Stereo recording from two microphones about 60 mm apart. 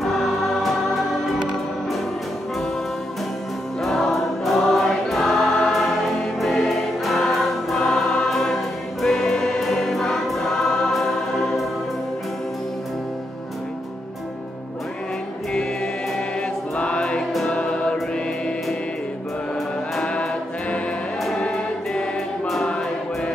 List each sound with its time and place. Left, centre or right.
0.6 s music: centre
3.8 s choir: centre
16.7 s music: centre
21.4 s music: centre